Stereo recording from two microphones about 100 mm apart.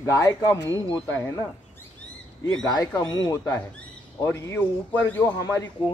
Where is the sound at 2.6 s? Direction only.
45° left (ahead or behind).